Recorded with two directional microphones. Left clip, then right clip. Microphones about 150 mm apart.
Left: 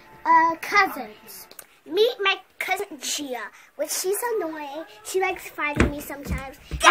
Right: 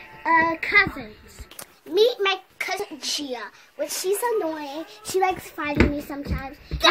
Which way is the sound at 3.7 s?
10° left (ahead or behind).